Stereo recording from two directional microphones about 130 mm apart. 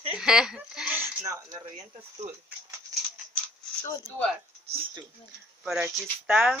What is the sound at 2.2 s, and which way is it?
Speech, 60° right (ahead or behind).